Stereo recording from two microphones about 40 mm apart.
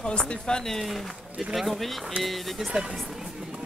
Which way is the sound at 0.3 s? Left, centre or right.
Centre.